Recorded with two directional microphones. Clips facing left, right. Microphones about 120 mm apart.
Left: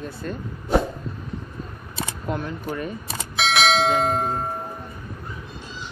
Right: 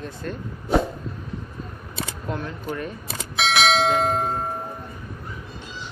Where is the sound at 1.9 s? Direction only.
5° left (ahead or behind).